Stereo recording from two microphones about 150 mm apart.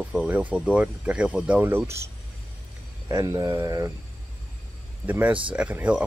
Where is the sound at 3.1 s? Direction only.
20° right (ahead or behind).